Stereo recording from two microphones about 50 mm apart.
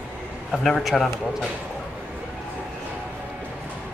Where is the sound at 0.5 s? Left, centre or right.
Centre.